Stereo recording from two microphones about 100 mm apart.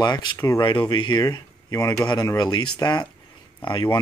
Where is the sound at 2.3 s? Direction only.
45° left (ahead or behind).